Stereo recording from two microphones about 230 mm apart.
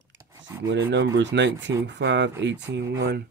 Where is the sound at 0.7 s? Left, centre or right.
Right.